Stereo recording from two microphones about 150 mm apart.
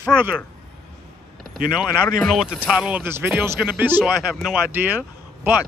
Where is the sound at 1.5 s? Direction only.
75° right (ahead or behind).